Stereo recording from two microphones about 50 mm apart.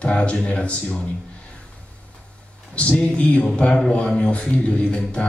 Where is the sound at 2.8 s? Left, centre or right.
Left.